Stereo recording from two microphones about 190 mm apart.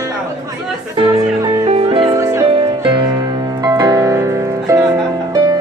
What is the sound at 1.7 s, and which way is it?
Music, 30° right (ahead or behind).